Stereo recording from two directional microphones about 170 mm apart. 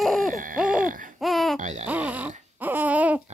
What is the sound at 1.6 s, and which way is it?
Baby cry, 45° right (ahead or behind).